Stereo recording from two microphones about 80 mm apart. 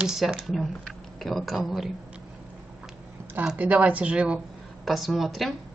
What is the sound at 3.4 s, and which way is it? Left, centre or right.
Speech, centre.